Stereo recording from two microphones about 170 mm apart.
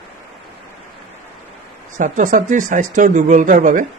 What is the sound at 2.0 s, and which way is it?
A man's voice, 50° right (ahead or behind).